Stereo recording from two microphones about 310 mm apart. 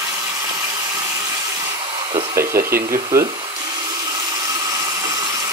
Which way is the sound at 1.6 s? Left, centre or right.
Centre.